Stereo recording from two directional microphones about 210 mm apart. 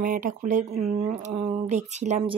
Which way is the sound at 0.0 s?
40° right (ahead or behind).